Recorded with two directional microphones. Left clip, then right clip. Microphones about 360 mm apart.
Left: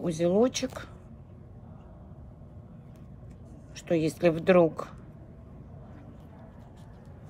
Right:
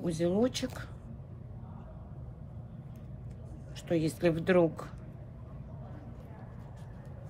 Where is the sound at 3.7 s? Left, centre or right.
Centre.